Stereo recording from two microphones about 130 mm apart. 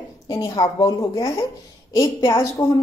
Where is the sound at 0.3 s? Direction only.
25° left (ahead or behind).